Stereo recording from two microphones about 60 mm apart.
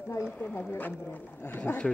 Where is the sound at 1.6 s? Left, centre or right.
Left.